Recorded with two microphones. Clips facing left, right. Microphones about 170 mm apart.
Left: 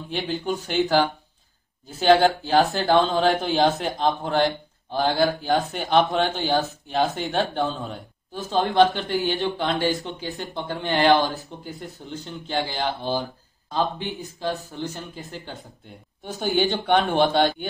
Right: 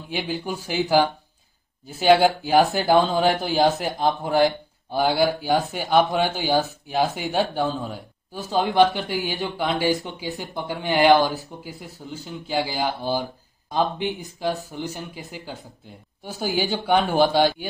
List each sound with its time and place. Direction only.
0.1 s speech: 5° right (ahead or behind)
2.0 s speech: 10° right (ahead or behind)
8.5 s speech: 15° right (ahead or behind)
11.4 s speech: centre (ahead or behind)
13.7 s speech: 15° right (ahead or behind)
15.2 s speech: centre (ahead or behind)